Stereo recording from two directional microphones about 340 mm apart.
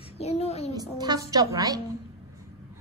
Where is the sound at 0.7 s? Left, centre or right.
Centre.